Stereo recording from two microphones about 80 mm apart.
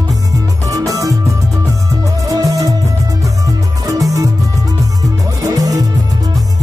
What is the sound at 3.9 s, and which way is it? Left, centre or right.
Music, right.